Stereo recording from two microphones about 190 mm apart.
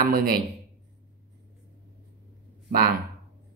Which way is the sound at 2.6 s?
45° right (ahead or behind).